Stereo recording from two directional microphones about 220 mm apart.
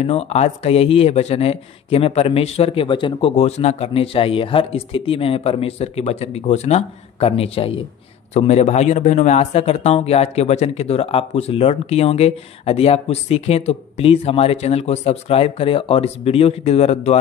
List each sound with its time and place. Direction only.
0.0 s speech: 30° left (ahead or behind)